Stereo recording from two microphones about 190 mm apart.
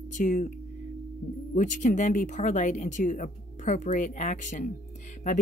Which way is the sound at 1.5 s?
40° left (ahead or behind).